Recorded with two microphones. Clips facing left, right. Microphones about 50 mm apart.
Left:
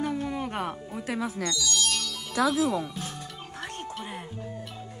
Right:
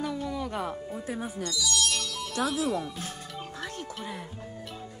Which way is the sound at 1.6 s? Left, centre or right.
Centre.